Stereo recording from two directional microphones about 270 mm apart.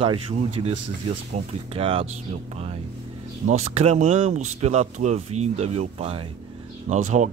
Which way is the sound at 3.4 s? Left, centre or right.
Right.